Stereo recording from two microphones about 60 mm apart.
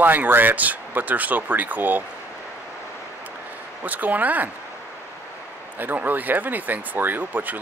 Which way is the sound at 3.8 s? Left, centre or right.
Right.